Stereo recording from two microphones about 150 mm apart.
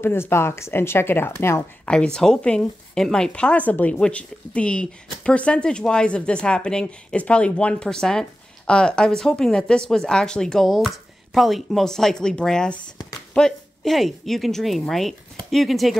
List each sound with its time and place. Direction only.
0.0 s speech: 15° left (ahead or behind)
1.9 s speech: 5° left (ahead or behind)